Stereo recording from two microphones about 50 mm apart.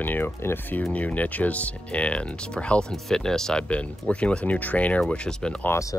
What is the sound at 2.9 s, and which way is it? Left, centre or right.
Speech, centre.